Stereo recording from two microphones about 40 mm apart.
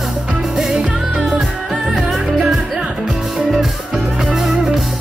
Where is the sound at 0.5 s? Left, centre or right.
Centre.